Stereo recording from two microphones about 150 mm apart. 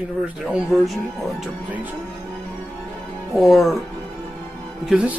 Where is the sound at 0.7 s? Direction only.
Centre (ahead or behind).